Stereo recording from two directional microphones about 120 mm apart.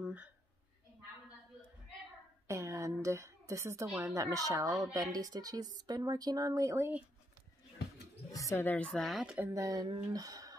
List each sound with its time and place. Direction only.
0.0 s a sound: 10° right (ahead or behind)
2.4 s a woman's voice: 25° right (ahead or behind)
8.3 s speech: 25° left (ahead or behind)
8.6 s speech: 10° left (ahead or behind); by 9.5 s 5° right (ahead or behind)
9.5 s a woman's voice: 30° right (ahead or behind)